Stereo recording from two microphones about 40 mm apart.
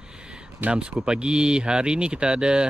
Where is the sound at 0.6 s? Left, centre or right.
Right.